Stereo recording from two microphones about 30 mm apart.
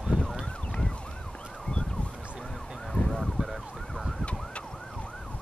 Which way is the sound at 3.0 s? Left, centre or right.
Left.